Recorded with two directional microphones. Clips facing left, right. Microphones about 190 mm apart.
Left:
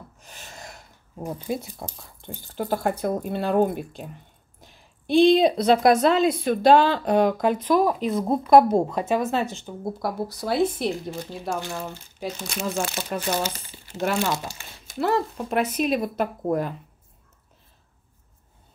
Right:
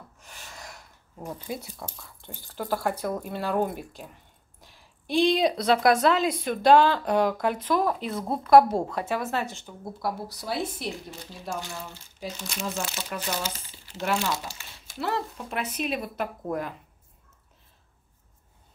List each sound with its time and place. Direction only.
0.2 s gasp: 20° left (ahead or behind)
1.3 s speech: 25° left (ahead or behind)
9.9 s speech: 45° left (ahead or behind)